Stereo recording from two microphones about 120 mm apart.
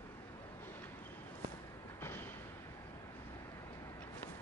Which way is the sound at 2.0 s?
20° left (ahead or behind).